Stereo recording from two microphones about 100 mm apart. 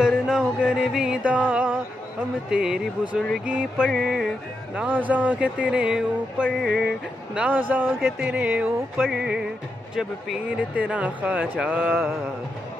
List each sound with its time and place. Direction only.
0.0 s music: 10° right (ahead or behind)
2.5 s speech: 5° right (ahead or behind)
3.9 s music: 5° left (ahead or behind)
4.7 s speech: 15° right (ahead or behind)